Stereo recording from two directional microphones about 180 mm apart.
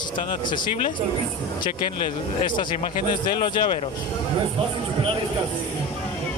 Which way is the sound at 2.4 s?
25° left (ahead or behind).